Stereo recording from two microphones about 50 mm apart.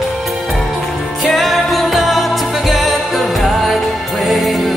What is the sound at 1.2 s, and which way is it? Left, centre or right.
Music, centre.